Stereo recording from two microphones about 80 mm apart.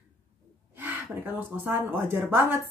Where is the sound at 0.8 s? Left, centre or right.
Right.